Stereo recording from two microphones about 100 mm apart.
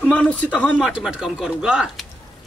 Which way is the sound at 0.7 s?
5° right (ahead or behind).